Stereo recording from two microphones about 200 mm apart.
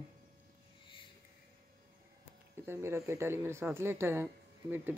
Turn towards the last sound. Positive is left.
turn(degrees=-10)  # may be behind; listen again after turning